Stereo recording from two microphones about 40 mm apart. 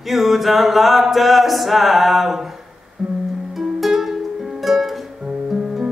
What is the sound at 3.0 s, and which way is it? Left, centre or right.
Music, right.